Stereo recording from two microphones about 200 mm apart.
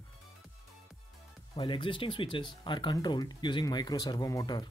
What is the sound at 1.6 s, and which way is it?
Speech, 25° left (ahead or behind).